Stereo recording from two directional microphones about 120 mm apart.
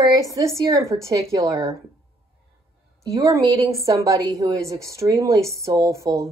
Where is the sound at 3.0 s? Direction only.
30° right (ahead or behind).